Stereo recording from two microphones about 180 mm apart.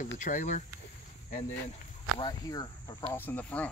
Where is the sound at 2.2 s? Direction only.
20° left (ahead or behind).